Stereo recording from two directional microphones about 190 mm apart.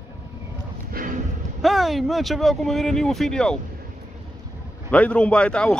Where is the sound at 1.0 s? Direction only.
50° right (ahead or behind).